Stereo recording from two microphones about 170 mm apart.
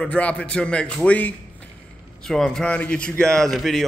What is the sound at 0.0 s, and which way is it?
Speech, 5° left (ahead or behind).